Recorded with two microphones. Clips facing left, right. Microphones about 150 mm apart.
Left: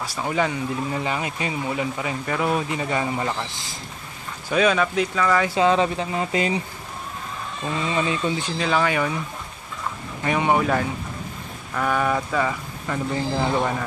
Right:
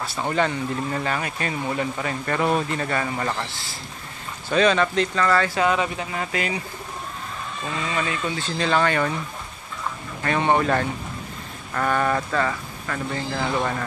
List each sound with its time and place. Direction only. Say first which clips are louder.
0.0 s speech: right 1 dB; 10° left (ahead or behind); by 6.6 s 30° left (ahead or behind)
7.8 s speech: left 3 dB; 25° left (ahead or behind)
8.5 s speech: right 2 dB; 5° left (ahead or behind)
10.2 s speech: even; 10° left (ahead or behind)